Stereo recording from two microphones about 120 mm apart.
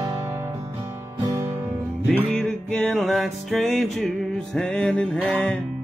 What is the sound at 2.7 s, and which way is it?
Music, 5° left (ahead or behind).